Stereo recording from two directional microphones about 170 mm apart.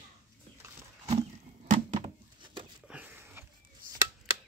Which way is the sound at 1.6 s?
35° right (ahead or behind).